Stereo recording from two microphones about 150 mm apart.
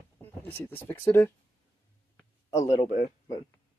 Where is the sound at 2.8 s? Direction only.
70° left (ahead or behind).